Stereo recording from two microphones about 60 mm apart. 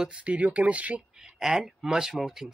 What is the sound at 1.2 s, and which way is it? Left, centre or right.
Speech, centre.